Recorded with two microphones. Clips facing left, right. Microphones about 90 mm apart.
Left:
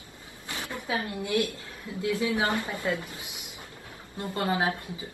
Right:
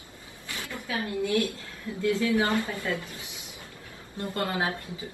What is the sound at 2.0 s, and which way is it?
Speech, 20° left (ahead or behind).